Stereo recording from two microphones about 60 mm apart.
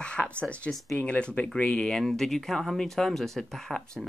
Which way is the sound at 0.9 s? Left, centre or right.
Left.